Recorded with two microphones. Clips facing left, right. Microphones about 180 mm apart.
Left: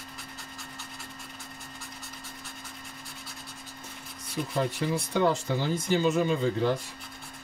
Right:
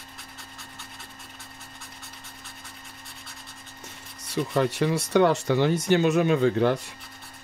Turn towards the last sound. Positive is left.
turn(degrees=-70)  # may be behind; listen again after turning